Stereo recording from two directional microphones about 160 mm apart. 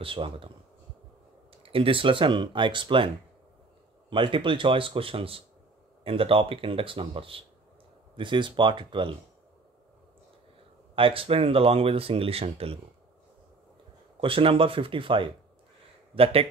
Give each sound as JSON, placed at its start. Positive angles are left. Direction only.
{"t": 0.0, "sound": "speech", "side_deg": -35}
{"t": 1.5, "sound": "speech", "side_deg": -35}
{"t": 4.1, "sound": "speech", "side_deg": -30}
{"t": 11.0, "sound": "speech", "side_deg": -35}
{"t": 14.2, "sound": "speech", "side_deg": -35}